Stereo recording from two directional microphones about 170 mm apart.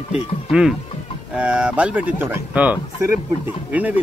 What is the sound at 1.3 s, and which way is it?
Speech, 5° right (ahead or behind).